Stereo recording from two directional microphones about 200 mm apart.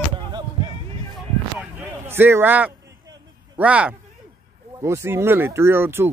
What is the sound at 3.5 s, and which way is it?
Speech, 5° right (ahead or behind).